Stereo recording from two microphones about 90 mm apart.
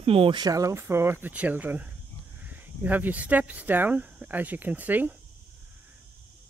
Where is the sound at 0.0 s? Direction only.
90° right.